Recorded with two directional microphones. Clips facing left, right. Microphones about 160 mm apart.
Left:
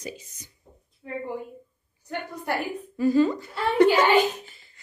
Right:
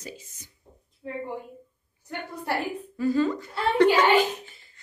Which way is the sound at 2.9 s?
15° left (ahead or behind).